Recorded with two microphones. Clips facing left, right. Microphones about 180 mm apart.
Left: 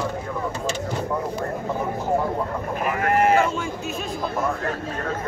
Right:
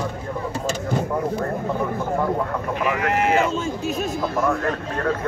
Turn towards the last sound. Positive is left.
turn(degrees=50)  # may be behind; listen again after turning